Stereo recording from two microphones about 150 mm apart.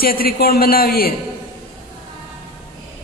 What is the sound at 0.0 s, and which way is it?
A man's voice, 80° left.